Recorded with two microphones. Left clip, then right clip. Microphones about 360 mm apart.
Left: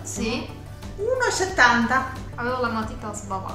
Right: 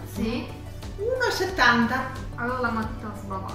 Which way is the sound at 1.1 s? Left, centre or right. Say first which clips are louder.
Left 4 dB; centre.